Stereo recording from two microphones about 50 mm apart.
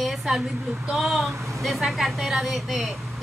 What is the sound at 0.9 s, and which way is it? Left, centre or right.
A woman's voice, centre.